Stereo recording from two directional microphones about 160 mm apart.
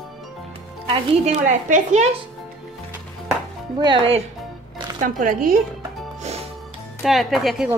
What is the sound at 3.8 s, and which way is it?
Speech, 35° right (ahead or behind).